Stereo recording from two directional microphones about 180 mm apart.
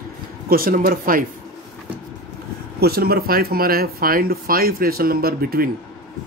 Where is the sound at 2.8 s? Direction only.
60° right (ahead or behind).